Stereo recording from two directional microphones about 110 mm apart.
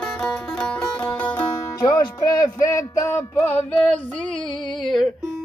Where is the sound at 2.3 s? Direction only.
30° left (ahead or behind).